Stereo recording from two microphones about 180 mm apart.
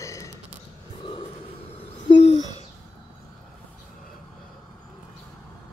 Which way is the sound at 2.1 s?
35° left (ahead or behind).